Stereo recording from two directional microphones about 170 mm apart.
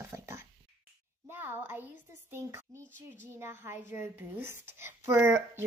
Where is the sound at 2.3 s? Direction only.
15° right (ahead or behind).